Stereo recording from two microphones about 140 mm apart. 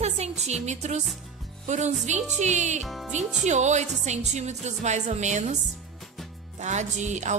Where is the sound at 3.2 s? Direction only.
5° right (ahead or behind).